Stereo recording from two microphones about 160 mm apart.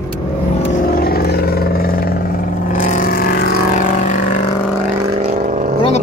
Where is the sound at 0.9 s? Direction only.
70° left (ahead or behind); by 4.4 s 50° left (ahead or behind).